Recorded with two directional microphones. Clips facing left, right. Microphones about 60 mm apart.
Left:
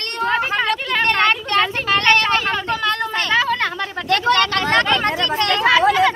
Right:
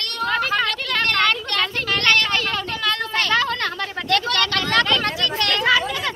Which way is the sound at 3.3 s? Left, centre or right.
Centre.